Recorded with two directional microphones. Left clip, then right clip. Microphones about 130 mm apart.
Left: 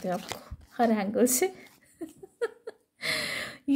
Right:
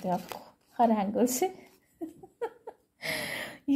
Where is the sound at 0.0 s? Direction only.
20° left (ahead or behind).